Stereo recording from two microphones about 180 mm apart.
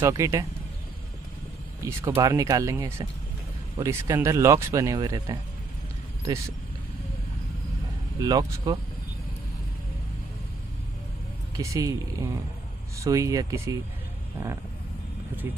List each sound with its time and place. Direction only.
0.0 s speech: 15° right (ahead or behind)
1.8 s speech: 15° right (ahead or behind)
8.2 s speech: 20° right (ahead or behind)
11.5 s speech: 20° right (ahead or behind)